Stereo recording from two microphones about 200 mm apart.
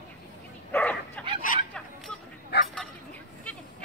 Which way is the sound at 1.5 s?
40° left (ahead or behind).